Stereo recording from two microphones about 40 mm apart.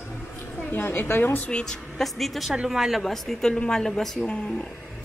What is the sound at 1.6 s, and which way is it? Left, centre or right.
Speech, centre.